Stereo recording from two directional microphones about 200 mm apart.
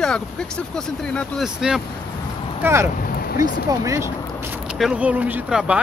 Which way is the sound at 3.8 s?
15° right (ahead or behind).